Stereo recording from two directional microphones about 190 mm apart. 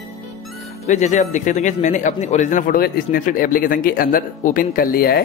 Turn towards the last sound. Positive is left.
turn(degrees=50)  # may be behind; listen again after turning